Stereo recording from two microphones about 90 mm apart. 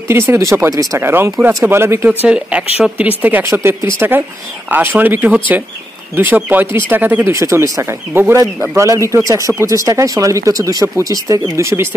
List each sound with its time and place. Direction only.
0.1 s speech: 25° right (ahead or behind)
2.0 s speech: 15° right (ahead or behind)
7.3 s speech: 35° right (ahead or behind)